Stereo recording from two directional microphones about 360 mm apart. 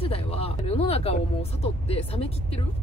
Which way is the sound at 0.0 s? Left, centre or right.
Centre.